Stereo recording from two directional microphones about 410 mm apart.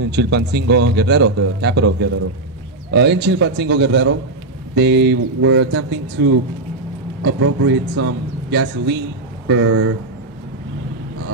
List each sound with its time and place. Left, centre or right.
0.0 s a man's voice: right